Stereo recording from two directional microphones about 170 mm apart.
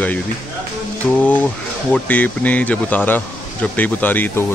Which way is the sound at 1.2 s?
10° left (ahead or behind).